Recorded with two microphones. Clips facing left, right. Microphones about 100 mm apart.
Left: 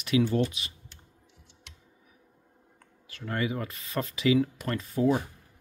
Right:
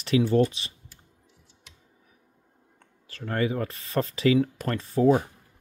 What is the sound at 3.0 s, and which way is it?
Speech, 35° right (ahead or behind).